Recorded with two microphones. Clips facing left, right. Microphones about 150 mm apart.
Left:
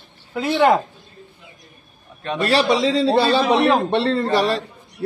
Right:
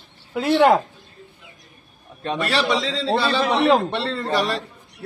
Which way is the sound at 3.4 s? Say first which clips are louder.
Left 3 dB; 5° left (ahead or behind).